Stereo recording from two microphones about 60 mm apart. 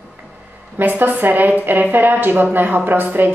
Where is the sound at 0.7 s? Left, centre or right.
Right.